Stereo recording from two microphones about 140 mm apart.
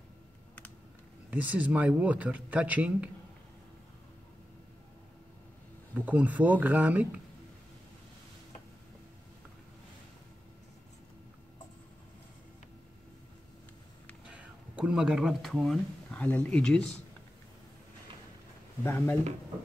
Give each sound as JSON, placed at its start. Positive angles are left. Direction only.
{"t": 1.3, "sound": "speech", "side_deg": -10}
{"t": 5.9, "sound": "speech", "side_deg": -10}
{"t": 14.2, "sound": "speech", "side_deg": -10}
{"t": 18.9, "sound": "speech", "side_deg": 15}